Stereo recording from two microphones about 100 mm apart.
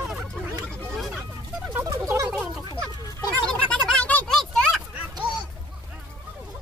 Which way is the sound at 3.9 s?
15° left (ahead or behind).